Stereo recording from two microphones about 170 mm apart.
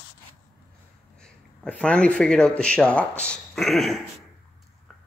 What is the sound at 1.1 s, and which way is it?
Speech, 5° left (ahead or behind).